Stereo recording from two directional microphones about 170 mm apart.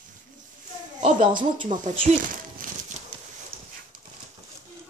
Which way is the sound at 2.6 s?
55° right (ahead or behind).